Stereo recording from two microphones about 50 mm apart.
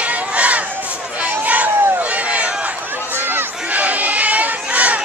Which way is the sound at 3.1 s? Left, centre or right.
Right.